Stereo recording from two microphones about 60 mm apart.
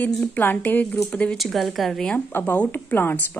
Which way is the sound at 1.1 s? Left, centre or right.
Centre.